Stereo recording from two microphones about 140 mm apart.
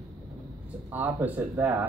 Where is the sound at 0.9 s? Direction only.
15° right (ahead or behind).